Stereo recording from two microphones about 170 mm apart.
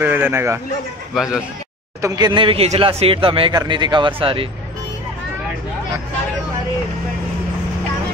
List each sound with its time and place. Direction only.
0.0 s speech: 10° right (ahead or behind)
1.1 s speech: 5° right (ahead or behind)
2.0 s speech: 20° right (ahead or behind)